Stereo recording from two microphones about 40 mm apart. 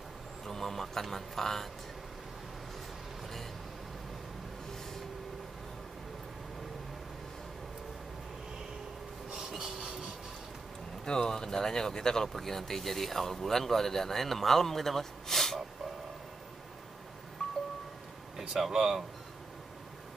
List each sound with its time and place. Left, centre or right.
0.5 s a sound: centre
9.3 s a sound: centre
9.8 s vehicle: centre
11.1 s speech: centre
17.4 s wind chime: centre
18.5 s speech: centre